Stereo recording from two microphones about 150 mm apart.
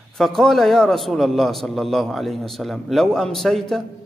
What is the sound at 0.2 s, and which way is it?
A man's voice, centre (ahead or behind).